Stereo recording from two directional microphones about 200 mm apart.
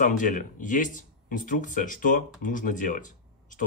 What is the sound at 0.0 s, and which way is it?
Speech, 40° left (ahead or behind).